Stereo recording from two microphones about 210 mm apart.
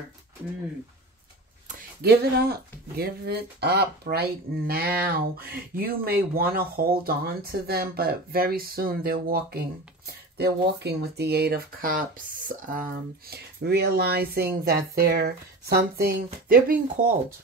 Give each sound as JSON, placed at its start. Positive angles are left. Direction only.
{"t": 2.0, "sound": "speech", "side_deg": -50}
{"t": 13.3, "sound": "speech", "side_deg": -50}